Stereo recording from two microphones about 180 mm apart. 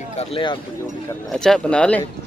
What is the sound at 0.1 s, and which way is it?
Speech, 35° left (ahead or behind).